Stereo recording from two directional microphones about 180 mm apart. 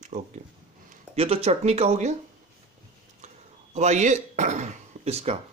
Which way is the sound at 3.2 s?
40° right (ahead or behind).